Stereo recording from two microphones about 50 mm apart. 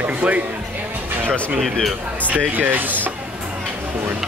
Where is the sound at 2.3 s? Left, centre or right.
Right.